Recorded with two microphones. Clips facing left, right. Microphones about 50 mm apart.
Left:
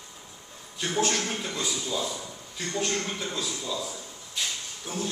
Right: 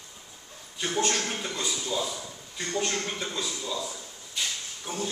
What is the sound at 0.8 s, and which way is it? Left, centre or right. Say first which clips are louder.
A man's voice: left 1 dB; centre.